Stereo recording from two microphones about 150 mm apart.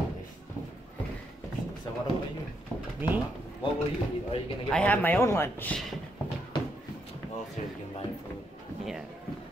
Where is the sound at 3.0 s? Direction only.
15° right (ahead or behind).